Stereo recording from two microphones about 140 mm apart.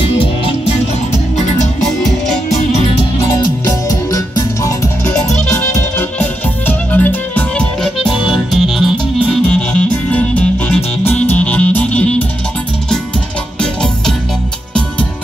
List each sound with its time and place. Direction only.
0.0 s music: 40° left (ahead or behind)
2.7 s music: 55° left (ahead or behind)
3.3 s music: 25° left (ahead or behind)
5.1 s music: 10° left (ahead or behind)